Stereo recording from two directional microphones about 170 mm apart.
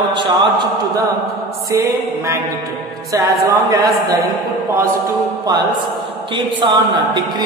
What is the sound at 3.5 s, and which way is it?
Speech, 20° right (ahead or behind).